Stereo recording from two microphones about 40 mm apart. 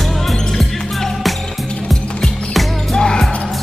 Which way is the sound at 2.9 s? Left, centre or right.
Left.